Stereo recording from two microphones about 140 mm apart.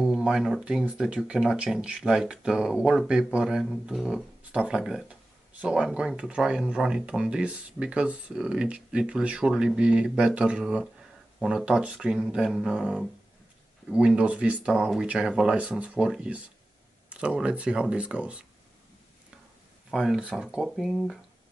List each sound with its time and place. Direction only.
0.0 s speech: 5° right (ahead or behind)
19.9 s speech: 5° right (ahead or behind)